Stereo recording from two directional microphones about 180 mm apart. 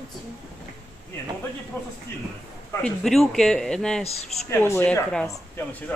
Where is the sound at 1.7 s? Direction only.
15° left (ahead or behind).